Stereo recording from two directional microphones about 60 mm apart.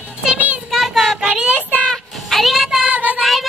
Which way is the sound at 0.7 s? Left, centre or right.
Centre.